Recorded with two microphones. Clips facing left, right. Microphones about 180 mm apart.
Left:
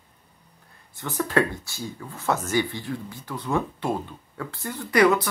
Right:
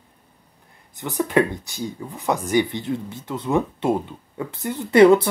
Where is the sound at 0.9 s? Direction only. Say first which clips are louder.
Right 4 dB; 15° right (ahead or behind).